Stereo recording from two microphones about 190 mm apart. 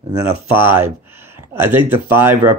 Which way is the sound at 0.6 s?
10° right (ahead or behind).